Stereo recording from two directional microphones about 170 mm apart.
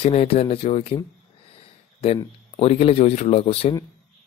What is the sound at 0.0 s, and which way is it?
Speech, 35° left (ahead or behind).